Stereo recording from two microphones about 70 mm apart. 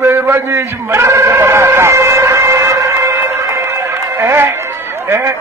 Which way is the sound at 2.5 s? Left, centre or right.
Right.